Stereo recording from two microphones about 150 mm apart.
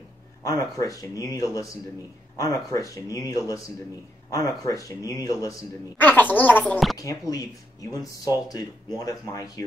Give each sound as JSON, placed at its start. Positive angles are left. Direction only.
{"t": 0.4, "sound": "speech", "side_deg": 20}
{"t": 5.9, "sound": "speech", "side_deg": 10}
{"t": 7.0, "sound": "speech", "side_deg": 25}
{"t": 8.5, "sound": "speech", "side_deg": 25}